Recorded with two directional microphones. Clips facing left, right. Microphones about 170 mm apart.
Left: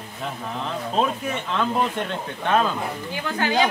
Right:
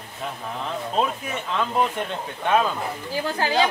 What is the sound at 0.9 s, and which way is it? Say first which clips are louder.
Speech: left 2 dB; 5° right (ahead or behind).